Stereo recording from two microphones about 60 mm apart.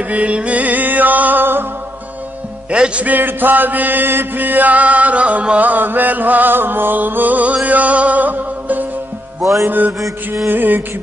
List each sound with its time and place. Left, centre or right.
0.1 s music: right
2.7 s music: centre
3.2 s chant: right
9.4 s music: right
9.7 s music: right
9.9 s music: right
10.5 s music: right